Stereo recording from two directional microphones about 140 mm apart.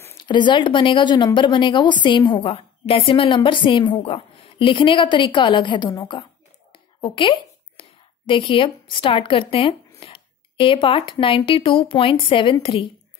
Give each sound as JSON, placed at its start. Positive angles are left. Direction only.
{"t": 0.2, "sound": "speech", "side_deg": 35}
{"t": 6.7, "sound": "whispering", "side_deg": 35}
{"t": 8.3, "sound": "speech", "side_deg": 40}